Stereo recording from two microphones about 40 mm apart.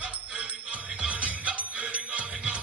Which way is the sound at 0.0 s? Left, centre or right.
Right.